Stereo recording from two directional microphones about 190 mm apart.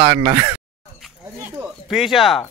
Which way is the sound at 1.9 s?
Centre (ahead or behind).